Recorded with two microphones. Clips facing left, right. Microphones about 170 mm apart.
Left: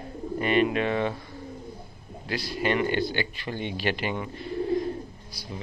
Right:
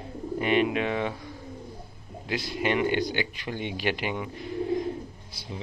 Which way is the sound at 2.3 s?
20° right (ahead or behind).